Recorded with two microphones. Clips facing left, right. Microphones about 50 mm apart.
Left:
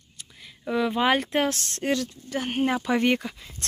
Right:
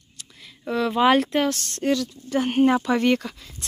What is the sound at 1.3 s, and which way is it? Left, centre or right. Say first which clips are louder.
Speech: right 2 dB; left.